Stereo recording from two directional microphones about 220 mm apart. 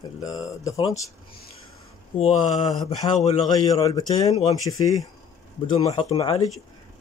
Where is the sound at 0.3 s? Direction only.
15° left (ahead or behind).